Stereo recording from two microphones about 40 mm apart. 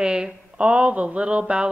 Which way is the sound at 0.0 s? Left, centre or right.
Centre.